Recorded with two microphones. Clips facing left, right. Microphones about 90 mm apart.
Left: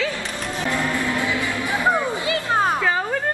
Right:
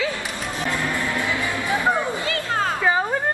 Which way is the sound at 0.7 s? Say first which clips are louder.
Left 3 dB; 20° left (ahead or behind).